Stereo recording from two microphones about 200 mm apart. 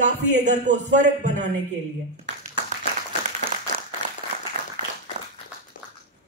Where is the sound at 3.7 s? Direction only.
45° right (ahead or behind).